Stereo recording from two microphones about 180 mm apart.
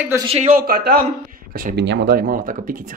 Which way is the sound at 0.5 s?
55° right (ahead or behind).